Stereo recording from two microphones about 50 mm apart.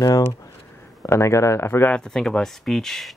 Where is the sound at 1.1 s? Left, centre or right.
Left.